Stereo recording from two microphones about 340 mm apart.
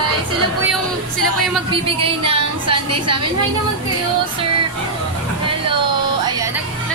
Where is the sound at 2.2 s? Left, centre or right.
Right.